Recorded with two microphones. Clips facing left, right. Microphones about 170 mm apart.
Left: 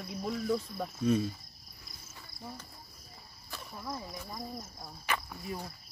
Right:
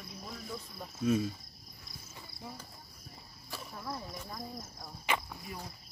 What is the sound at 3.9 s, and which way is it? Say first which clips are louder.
Speech: left 1 dB; 10° left (ahead or behind).